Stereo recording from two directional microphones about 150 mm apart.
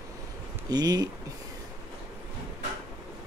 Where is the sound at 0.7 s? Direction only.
25° right (ahead or behind).